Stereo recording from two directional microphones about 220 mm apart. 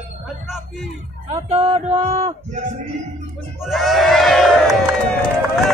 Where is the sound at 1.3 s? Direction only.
25° right (ahead or behind).